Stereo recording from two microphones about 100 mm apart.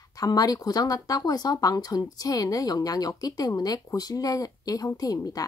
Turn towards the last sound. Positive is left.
turn(degrees=35)  # may be behind; listen again after turning